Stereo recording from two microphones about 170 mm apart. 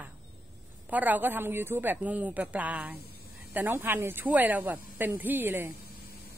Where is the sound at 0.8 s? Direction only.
10° right (ahead or behind).